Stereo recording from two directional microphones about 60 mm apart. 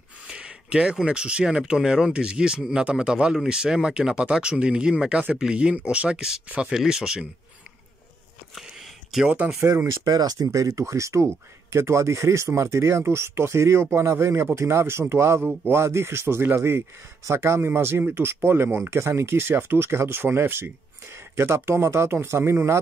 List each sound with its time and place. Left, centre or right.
0.3 s speech: centre
6.4 s speech: right
6.7 s speech: centre
8.5 s a sound: centre
10.0 s speech: right
10.7 s speech: right